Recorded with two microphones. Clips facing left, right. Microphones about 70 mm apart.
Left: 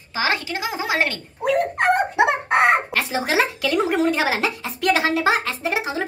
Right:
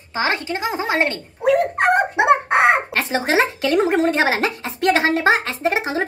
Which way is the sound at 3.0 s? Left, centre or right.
Right.